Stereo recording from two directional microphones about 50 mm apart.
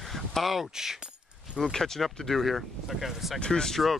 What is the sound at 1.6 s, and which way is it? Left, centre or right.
Speech, centre.